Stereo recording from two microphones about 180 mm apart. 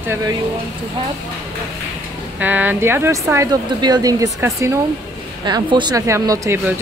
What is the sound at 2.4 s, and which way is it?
Speech, 10° right (ahead or behind).